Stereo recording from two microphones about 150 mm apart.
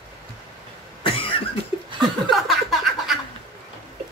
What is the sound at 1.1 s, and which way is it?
Cough, 35° left (ahead or behind).